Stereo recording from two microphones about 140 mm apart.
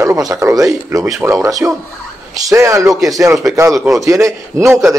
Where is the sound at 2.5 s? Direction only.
20° right (ahead or behind).